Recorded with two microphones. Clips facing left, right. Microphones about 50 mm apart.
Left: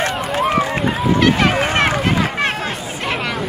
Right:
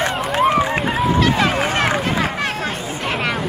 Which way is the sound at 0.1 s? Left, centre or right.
Centre.